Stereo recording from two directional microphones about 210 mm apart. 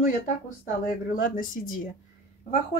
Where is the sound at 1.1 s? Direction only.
40° left (ahead or behind).